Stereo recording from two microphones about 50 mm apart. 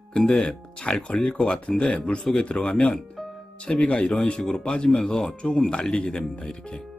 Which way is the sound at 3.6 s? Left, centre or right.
Left.